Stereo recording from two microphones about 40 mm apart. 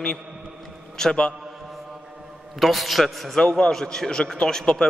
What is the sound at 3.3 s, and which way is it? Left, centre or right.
A man's voice, centre.